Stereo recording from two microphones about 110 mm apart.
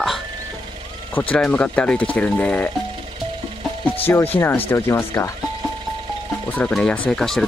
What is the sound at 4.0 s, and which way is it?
Speech, 20° left (ahead or behind).